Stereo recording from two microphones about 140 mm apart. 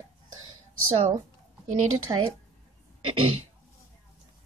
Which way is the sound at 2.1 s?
35° right (ahead or behind).